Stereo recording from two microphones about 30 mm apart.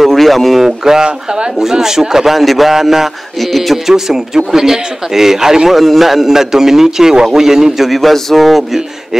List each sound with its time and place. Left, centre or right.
0.0 s a sound: centre
0.6 s a man's voice: centre
1.0 s speech: right
1.6 s a man's voice: centre
3.3 s speech: centre
3.7 s a man's voice: centre
5.7 s a man's voice: centre
7.9 s speech: centre